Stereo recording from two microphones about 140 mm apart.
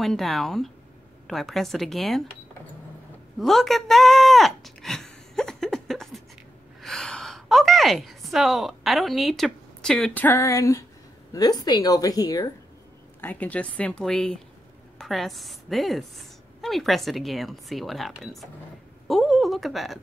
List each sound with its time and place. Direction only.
0.0 s a woman's voice: 5° left (ahead or behind)
3.3 s a sound: centre (ahead or behind)
10.2 s a woman's voice: 20° left (ahead or behind)
13.2 s a woman's voice: 10° left (ahead or behind)